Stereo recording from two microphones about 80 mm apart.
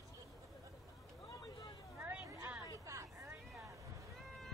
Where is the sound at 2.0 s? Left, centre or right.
Right.